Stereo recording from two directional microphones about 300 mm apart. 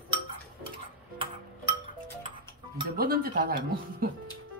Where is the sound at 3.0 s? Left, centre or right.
Right.